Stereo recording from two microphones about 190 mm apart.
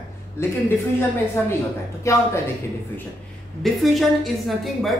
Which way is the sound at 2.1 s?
15° left (ahead or behind).